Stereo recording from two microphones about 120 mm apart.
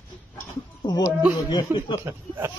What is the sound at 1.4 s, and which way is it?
Speech, 40° left (ahead or behind).